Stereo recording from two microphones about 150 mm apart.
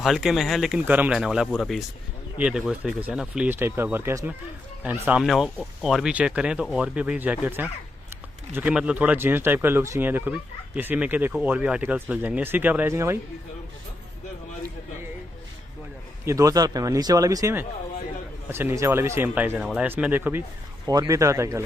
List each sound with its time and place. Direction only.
0.0 s speech: centre (ahead or behind)
5.2 s speech: centre (ahead or behind); by 13.2 s 15° right (ahead or behind)
16.3 s speech: 20° right (ahead or behind)
20.8 s speech: 25° right (ahead or behind)